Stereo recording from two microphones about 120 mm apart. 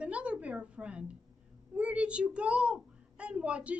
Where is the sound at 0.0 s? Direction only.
10° right (ahead or behind).